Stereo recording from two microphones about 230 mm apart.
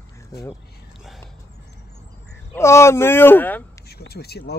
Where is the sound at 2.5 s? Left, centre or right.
Centre.